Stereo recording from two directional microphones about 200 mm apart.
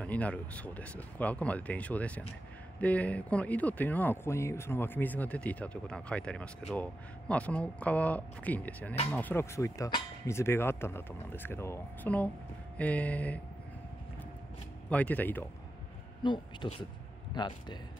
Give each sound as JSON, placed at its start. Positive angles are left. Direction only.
{"t": 0.0, "sound": "speech", "side_deg": 5}
{"t": 14.9, "sound": "speech", "side_deg": 10}
{"t": 16.2, "sound": "speech", "side_deg": 25}